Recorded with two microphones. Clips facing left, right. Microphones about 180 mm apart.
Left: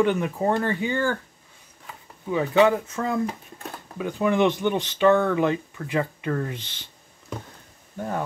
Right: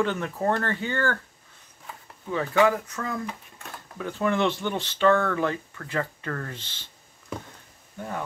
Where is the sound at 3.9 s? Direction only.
15° left (ahead or behind).